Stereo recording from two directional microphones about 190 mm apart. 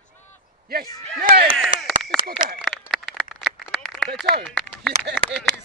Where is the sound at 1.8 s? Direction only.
Centre (ahead or behind).